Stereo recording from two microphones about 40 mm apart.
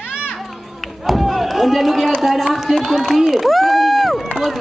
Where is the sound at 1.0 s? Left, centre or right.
Centre.